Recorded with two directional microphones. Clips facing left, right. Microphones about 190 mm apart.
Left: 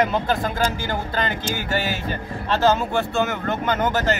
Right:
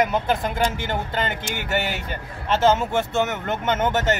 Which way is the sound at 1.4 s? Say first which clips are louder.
Left 1 dB; 60° right (ahead or behind).